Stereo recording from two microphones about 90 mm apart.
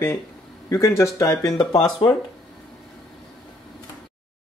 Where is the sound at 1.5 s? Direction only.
50° left (ahead or behind).